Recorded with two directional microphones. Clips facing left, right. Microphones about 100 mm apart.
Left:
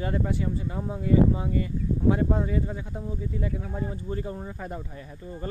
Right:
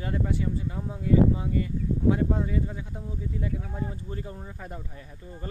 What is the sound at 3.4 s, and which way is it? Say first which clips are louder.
Speech: left 1 dB; 65° left (ahead or behind).